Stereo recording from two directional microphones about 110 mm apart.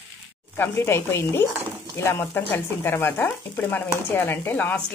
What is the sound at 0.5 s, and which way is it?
Speech, 25° left (ahead or behind).